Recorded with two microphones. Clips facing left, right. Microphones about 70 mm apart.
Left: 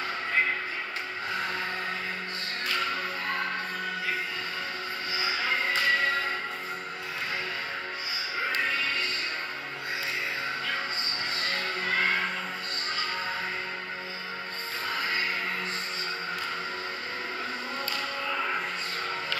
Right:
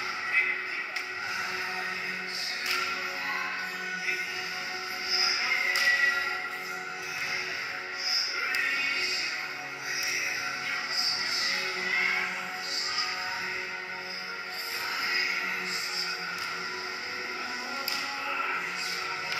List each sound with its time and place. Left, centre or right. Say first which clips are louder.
5.1 s music: left 2 dB; centre
8.4 s music: left 2 dB; left
11.8 s music: left 3 dB; left
15.0 s music: left 1 dB; centre